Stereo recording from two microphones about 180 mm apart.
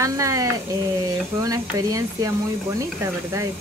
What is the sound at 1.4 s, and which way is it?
Speech, 20° right (ahead or behind).